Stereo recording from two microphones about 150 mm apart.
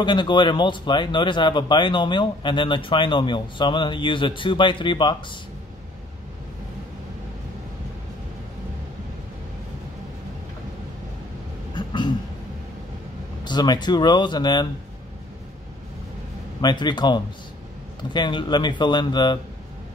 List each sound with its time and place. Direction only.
0.0 s speech: 30° left (ahead or behind)
11.7 s cough: 30° left (ahead or behind)
13.4 s speech: 30° left (ahead or behind)
16.6 s speech: 30° left (ahead or behind)